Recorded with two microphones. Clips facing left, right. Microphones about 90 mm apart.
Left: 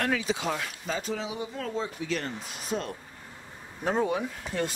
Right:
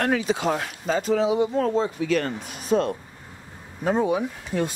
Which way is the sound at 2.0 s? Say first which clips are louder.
Right 8 dB; 65° right (ahead or behind).